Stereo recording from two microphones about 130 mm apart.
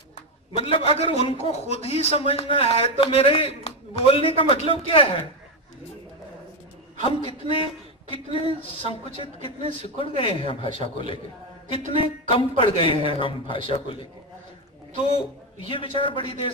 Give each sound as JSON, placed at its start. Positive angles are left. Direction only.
{"t": 0.6, "sound": "a man's voice", "side_deg": 45}
{"t": 7.0, "sound": "a man's voice", "side_deg": 45}
{"t": 15.7, "sound": "a man's voice", "side_deg": 45}